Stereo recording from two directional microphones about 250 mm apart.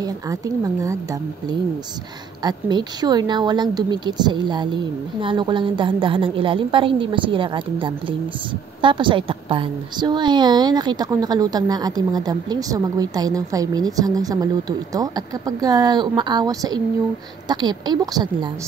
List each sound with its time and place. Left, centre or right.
0.0 s a woman's voice: centre
2.4 s a woman's voice: centre